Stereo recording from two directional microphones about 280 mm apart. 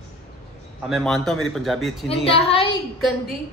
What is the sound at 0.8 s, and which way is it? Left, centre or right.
Speech, centre.